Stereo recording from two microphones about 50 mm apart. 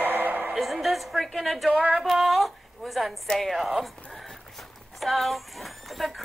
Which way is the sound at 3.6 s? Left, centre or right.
Centre.